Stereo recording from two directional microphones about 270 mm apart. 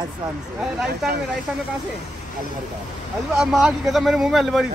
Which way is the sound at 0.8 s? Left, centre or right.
Right.